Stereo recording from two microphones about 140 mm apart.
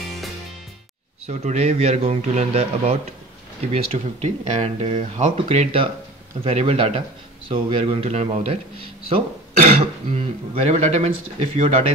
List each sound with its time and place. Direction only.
1.2 s speech: 50° right (ahead or behind)